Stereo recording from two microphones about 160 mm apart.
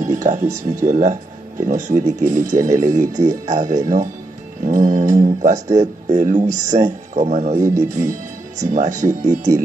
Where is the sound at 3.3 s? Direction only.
45° right (ahead or behind).